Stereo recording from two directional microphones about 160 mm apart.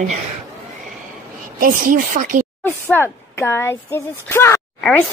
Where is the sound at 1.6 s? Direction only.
60° right (ahead or behind).